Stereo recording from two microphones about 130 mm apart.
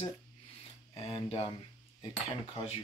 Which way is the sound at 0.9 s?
50° left (ahead or behind).